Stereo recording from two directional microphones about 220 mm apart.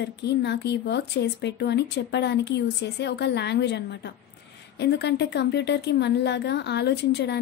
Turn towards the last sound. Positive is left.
turn(degrees=50)  # may be behind; listen again after turning